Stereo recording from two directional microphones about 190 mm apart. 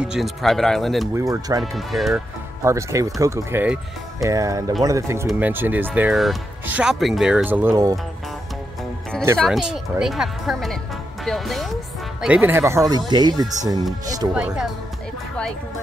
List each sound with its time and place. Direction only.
0.0 s speech: centre (ahead or behind)
1.1 s speech: 15° right (ahead or behind)
1.6 s speech: centre (ahead or behind)
2.6 s speech: 15° right (ahead or behind)
5.2 s speech: 5° right (ahead or behind)
9.4 s speech: centre (ahead or behind); by 13.5 s 20° right (ahead or behind)
14.3 s speech: 5° right (ahead or behind)